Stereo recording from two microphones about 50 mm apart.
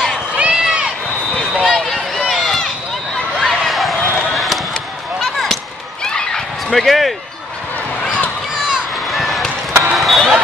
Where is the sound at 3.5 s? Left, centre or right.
Centre.